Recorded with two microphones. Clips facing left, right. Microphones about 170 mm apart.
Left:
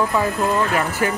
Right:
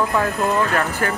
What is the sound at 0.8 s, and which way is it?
Speech, 10° left (ahead or behind).